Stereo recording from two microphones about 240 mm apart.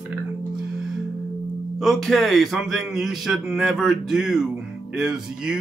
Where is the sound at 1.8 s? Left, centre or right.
Centre.